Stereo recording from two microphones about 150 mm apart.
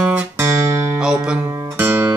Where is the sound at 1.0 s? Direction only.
5° right (ahead or behind).